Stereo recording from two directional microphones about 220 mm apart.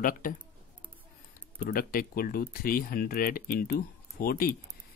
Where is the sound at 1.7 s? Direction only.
40° left (ahead or behind).